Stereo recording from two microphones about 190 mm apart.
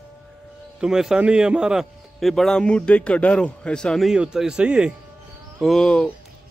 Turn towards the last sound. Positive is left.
turn(degrees=5)  # may be behind; listen again after turning